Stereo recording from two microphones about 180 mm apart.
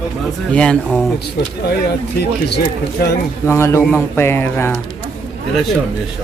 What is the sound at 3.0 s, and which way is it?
Speech, 60° left (ahead or behind).